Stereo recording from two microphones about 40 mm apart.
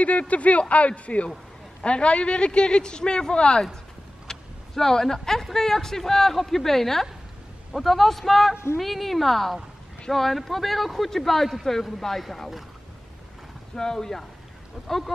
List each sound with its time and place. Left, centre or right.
0.0 s a man's voice: left; by 12.6 s centre
13.7 s speech: centre